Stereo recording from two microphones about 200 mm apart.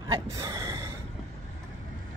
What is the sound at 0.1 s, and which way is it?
Gasp, 15° right (ahead or behind).